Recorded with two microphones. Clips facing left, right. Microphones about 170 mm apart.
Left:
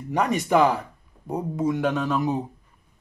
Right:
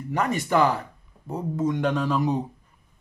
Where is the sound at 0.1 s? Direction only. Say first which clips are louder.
Left 2 dB; 15° left (ahead or behind).